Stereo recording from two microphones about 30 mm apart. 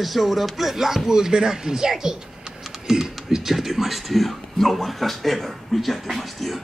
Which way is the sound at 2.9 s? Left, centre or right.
Centre.